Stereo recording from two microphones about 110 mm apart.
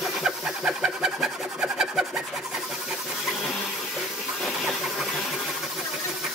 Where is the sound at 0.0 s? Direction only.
5° right (ahead or behind).